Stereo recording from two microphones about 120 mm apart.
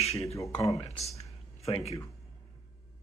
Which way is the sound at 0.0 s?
60° left (ahead or behind).